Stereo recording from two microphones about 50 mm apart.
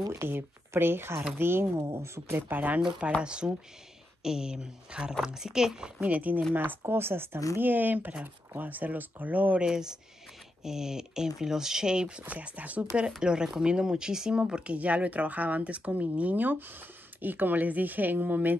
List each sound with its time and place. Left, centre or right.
0.2 s speech: right
2.0 s speech: right
2.3 s speech: right
3.2 s speech: centre
5.9 s speech: right
6.9 s speech: right
9.6 s speech: centre
12.3 s speech: right
13.2 s speech: centre; by 18.6 s right